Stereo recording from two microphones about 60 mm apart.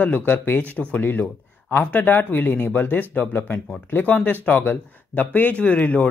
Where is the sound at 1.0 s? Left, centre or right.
Left.